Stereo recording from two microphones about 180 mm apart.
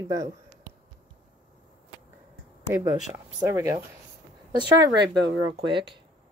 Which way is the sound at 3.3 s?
20° right (ahead or behind).